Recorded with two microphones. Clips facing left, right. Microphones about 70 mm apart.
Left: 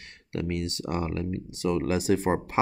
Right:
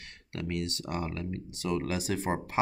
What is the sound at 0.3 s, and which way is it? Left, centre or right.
Speech, left.